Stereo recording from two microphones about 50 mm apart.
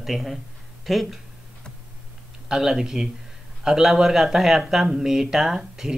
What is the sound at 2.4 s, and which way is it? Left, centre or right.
Speech, centre.